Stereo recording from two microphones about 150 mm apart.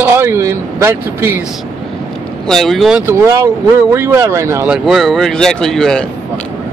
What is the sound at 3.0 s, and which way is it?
Speech, 20° right (ahead or behind).